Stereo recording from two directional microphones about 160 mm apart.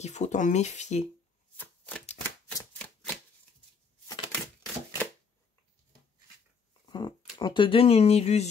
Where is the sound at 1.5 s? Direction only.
10° left (ahead or behind).